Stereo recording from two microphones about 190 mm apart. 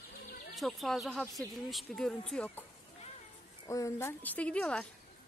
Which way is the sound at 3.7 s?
15° left (ahead or behind).